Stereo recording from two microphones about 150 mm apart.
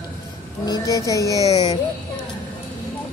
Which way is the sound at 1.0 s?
20° left (ahead or behind).